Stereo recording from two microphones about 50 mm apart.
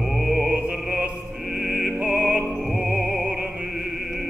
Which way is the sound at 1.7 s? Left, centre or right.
Right.